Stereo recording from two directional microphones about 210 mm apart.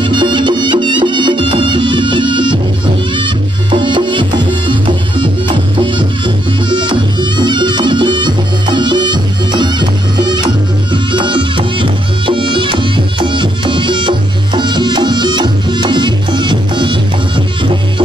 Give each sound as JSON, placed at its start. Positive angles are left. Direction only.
{"t": 0.0, "sound": "music", "side_deg": -20}
{"t": 3.7, "sound": "music", "side_deg": -20}
{"t": 5.8, "sound": "music", "side_deg": -20}